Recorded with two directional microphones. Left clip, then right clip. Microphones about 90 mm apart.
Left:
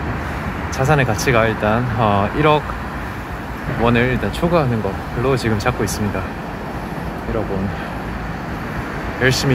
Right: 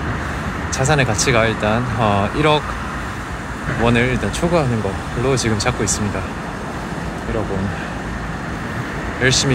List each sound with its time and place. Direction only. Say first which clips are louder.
0.7 s speech: even; 20° left (ahead or behind)
1.4 s speech: even; 15° left (ahead or behind)
3.8 s speech: left 1 dB; 10° left (ahead or behind)
5.6 s speech: even; 25° left (ahead or behind)
9.2 s speech: right 1 dB; 35° left (ahead or behind)